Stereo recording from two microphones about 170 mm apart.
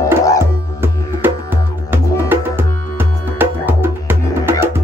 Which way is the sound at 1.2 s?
10° right (ahead or behind).